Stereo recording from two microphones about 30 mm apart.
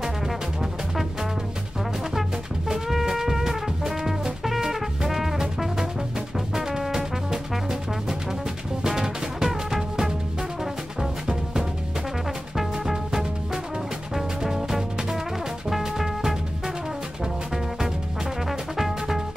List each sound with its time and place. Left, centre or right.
2.9 s music: centre
6.3 s brass instrument: centre
8.8 s music: centre
12.5 s music: centre
18.5 s brass instrument: centre